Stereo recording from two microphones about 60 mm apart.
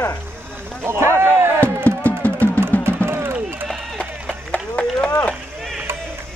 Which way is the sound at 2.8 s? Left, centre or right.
Right.